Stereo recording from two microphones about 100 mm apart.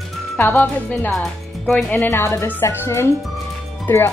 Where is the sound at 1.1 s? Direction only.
5° left (ahead or behind).